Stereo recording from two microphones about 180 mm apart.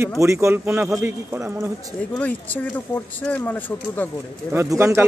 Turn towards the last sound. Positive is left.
turn(degrees=-15)  # may be behind; listen again after turning